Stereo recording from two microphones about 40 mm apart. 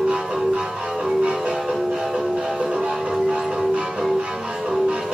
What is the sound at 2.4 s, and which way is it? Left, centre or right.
Music, right.